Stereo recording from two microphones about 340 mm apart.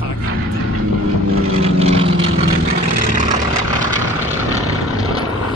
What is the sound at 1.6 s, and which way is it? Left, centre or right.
Vehicle, centre.